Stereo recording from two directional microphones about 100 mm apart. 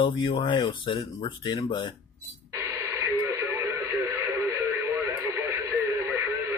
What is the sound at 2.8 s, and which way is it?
Radio, 25° right (ahead or behind).